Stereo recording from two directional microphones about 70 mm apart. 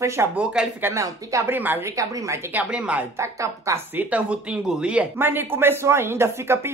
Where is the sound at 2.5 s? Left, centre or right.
Centre.